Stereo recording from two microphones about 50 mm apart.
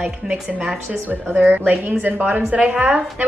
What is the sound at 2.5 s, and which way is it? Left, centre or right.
Speech, right.